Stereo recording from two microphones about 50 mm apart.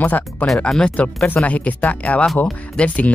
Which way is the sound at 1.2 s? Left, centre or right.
Left.